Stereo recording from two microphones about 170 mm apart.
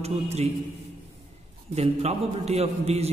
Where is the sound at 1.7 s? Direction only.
40° right (ahead or behind).